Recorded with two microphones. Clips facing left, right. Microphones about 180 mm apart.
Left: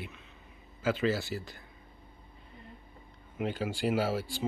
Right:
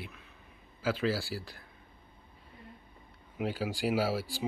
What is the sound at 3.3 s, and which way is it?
Speech, 5° right (ahead or behind).